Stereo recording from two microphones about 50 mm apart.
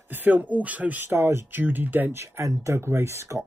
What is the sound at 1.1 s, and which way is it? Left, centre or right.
Speech, right.